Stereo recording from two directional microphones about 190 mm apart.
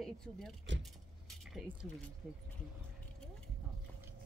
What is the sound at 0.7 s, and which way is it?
Speech, 70° right (ahead or behind).